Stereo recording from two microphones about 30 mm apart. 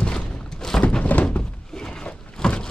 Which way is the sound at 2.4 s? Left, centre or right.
Left.